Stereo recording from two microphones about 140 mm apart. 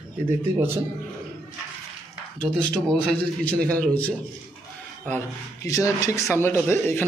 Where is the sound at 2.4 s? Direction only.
5° left (ahead or behind).